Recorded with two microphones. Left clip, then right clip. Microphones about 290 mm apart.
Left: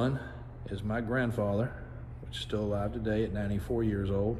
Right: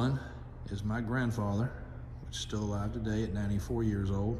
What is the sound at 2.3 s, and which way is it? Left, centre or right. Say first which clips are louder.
Speech: left 5 dB; centre.